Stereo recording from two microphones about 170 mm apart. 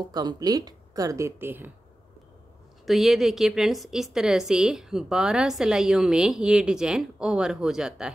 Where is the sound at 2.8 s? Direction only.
Centre (ahead or behind).